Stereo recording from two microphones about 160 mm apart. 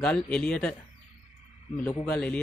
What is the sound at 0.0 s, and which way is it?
Speech, 5° left (ahead or behind).